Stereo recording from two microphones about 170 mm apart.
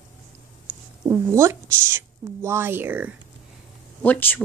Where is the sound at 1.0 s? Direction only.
15° right (ahead or behind).